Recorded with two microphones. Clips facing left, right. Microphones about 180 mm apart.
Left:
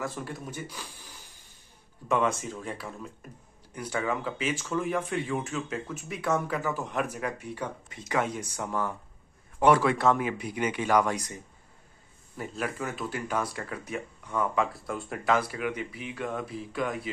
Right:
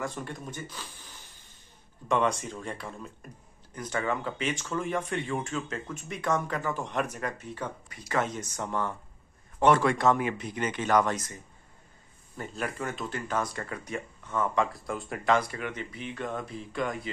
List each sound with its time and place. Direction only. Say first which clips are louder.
0.0 s speech: even; 5° left (ahead or behind); by 8.2 s 20° left (ahead or behind)
8.2 s speech: even; 10° left (ahead or behind)
12.4 s speech: left 1 dB; 5° left (ahead or behind)